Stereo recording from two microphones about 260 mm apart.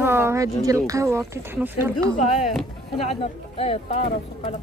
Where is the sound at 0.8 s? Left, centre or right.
Centre.